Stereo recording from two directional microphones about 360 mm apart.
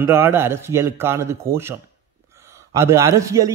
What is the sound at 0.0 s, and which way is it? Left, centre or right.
A man's voice, centre.